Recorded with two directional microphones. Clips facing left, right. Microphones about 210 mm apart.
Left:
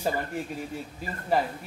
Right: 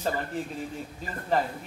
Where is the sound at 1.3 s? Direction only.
10° left (ahead or behind).